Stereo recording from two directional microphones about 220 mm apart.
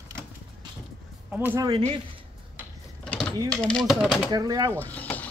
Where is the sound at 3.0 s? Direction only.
5° left (ahead or behind).